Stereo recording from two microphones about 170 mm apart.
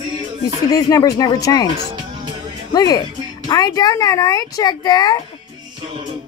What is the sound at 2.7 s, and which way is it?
Speech, 20° left (ahead or behind).